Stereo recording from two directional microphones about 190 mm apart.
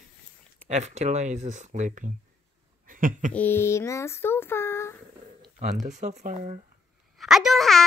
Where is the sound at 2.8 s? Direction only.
45° right (ahead or behind).